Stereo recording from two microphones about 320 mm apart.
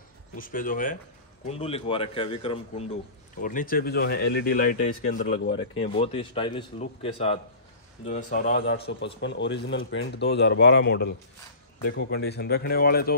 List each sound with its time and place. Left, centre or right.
0.4 s a man's voice: left
5.9 s a man's voice: centre